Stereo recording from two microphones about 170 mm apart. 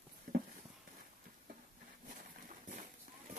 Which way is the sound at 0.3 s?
55° right (ahead or behind).